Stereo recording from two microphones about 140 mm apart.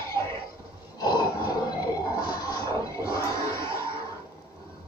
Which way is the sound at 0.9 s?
30° left (ahead or behind).